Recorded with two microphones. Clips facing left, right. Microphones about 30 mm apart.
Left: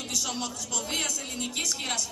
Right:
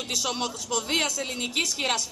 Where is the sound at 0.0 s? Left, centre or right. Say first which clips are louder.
Right 4 dB; right.